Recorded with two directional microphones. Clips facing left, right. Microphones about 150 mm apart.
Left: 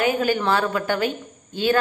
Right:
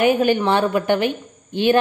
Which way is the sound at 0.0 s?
20° right (ahead or behind).